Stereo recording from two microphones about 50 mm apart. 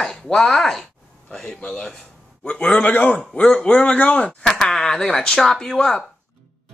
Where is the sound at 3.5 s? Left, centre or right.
Centre.